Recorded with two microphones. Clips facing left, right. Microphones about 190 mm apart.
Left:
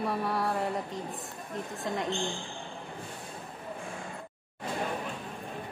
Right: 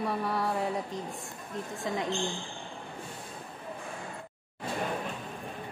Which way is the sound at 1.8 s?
Centre (ahead or behind).